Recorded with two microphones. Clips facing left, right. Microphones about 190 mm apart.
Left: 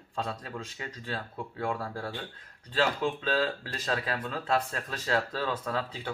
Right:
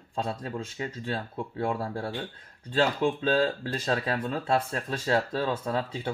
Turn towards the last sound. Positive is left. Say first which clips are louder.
# right 3 dB
turn(degrees=-25)  # may be behind; listen again after turning